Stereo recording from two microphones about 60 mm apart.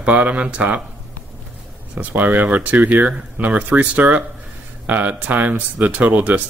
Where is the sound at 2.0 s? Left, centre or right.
Right.